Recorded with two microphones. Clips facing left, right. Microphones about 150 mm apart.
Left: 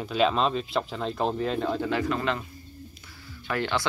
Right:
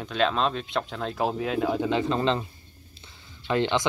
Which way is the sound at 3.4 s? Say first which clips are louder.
Right 4 dB; 20° right (ahead or behind).